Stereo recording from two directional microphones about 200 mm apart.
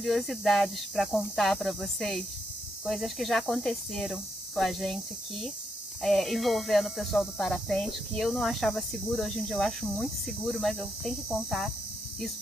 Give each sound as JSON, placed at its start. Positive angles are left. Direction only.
{"t": 0.0, "sound": "speech", "side_deg": 0}